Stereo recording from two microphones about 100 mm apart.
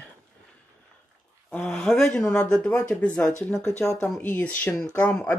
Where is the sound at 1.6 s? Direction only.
5° left (ahead or behind).